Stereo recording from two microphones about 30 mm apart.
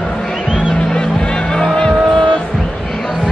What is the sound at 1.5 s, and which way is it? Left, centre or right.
Vehicle, left.